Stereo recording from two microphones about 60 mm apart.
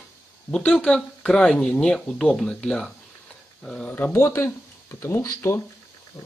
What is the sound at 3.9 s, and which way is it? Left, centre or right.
Speech, left.